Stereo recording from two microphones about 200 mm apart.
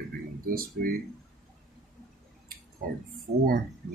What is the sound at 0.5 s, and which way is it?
Speech, 45° right (ahead or behind).